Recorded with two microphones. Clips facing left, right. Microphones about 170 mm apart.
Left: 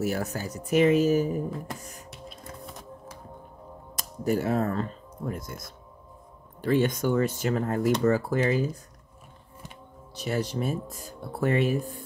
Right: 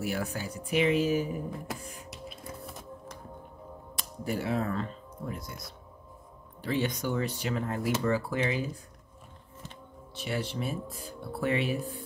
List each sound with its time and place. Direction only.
0.0 s speech: 40° left (ahead or behind)
2.0 s music: centre (ahead or behind)
3.9 s speech: 45° left (ahead or behind)
10.1 s speech: 40° left (ahead or behind)